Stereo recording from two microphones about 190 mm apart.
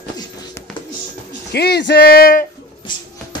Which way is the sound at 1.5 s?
60° left (ahead or behind).